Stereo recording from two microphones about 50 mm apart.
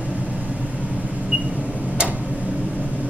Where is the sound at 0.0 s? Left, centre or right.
Right.